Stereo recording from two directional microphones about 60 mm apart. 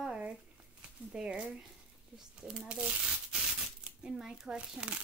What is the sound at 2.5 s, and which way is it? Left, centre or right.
Speech, centre.